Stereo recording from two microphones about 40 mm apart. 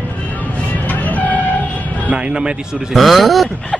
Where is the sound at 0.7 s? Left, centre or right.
Left.